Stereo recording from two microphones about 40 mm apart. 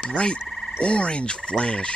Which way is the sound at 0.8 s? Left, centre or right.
Left.